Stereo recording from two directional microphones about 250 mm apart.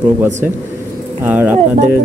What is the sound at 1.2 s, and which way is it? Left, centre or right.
Speech, centre.